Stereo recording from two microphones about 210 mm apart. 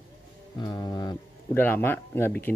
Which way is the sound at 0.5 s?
20° left (ahead or behind).